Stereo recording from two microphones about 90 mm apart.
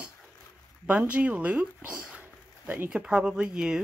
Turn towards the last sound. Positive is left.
turn(degrees=-10)  # may be behind; listen again after turning